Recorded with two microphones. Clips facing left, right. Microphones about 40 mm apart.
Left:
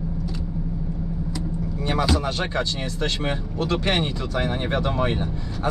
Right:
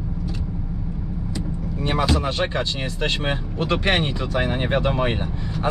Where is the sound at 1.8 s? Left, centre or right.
Centre.